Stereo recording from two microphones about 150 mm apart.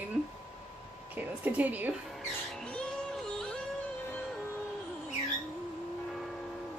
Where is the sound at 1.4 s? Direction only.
10° right (ahead or behind).